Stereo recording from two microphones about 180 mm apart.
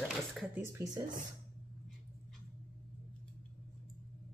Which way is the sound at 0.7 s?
15° right (ahead or behind).